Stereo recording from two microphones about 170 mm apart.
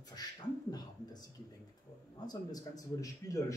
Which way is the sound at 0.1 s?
25° left (ahead or behind).